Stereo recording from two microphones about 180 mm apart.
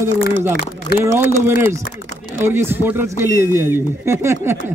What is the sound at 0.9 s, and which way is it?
Speech, 60° left (ahead or behind).